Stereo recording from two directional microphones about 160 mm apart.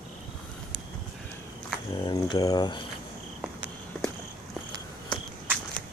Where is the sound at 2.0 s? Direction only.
25° left (ahead or behind).